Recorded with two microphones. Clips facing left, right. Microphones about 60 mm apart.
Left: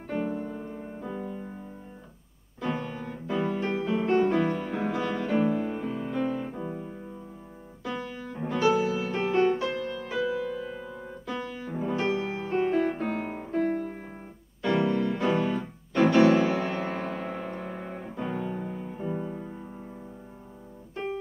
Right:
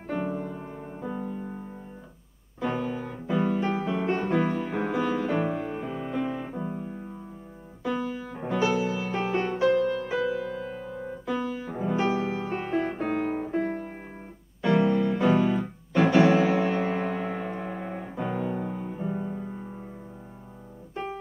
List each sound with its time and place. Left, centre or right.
0.0 s music: centre
1.1 s music: centre
2.6 s music: centre
13.6 s music: centre
14.8 s music: centre